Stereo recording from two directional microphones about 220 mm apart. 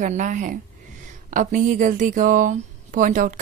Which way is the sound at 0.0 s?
35° right (ahead or behind).